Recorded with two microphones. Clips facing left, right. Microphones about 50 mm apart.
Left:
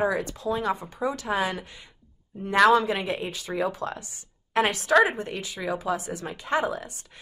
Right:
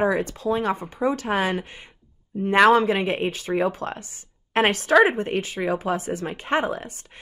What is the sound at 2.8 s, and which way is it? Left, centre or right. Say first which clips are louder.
A woman's voice: right 5 dB; right.